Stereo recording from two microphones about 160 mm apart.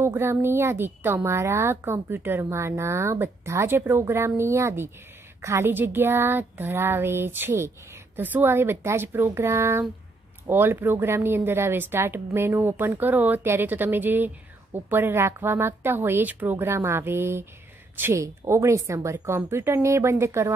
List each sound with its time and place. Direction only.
0.0 s a woman's voice: 15° right (ahead or behind)